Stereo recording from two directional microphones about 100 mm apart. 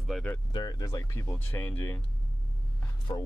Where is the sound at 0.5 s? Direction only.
45° left (ahead or behind).